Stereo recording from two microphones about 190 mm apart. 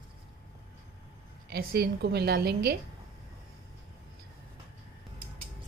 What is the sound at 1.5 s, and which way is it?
A woman's voice, 55° right (ahead or behind).